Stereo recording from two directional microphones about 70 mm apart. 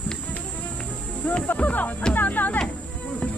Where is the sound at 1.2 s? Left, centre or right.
Centre.